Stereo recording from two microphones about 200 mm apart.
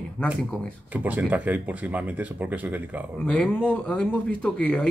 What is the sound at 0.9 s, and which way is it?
Speech, 10° right (ahead or behind).